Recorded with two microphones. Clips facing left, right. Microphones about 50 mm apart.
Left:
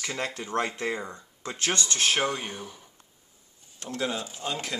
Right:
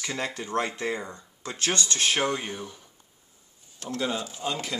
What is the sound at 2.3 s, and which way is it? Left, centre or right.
Speech, centre.